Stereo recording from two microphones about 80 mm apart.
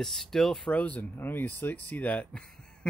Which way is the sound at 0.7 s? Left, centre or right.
Centre.